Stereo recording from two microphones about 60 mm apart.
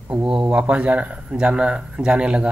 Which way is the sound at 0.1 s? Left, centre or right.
Centre.